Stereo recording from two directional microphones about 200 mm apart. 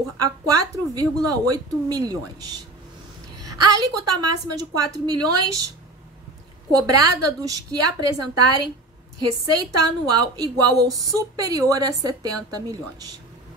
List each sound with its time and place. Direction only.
0.6 s a woman's voice: 20° right (ahead or behind)
3.7 s a woman's voice: 20° right (ahead or behind)
6.7 s a woman's voice: 20° right (ahead or behind)